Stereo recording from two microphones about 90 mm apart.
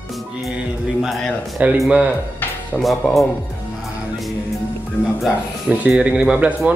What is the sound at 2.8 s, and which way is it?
Speech, centre (ahead or behind).